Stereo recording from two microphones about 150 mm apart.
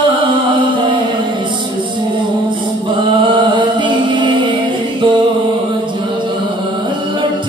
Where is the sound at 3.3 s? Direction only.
30° right (ahead or behind).